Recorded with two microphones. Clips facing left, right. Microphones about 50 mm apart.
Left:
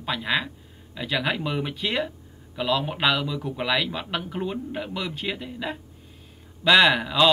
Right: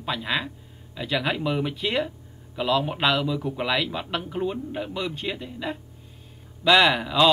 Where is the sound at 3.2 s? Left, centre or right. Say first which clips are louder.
Right 2 dB; centre.